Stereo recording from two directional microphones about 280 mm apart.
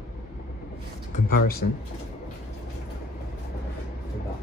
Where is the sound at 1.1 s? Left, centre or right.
Left.